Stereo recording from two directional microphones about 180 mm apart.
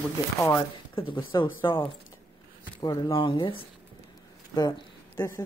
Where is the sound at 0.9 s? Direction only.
30° left (ahead or behind).